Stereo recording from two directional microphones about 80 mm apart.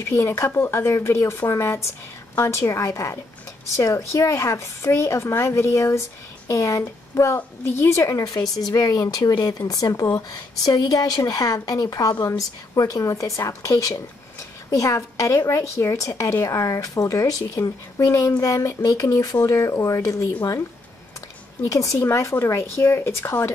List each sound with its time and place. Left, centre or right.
0.0 s a woman's voice: left
21.6 s a woman's voice: left